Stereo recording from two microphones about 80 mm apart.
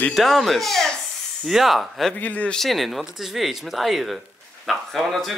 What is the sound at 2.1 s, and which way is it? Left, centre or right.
Speech, centre.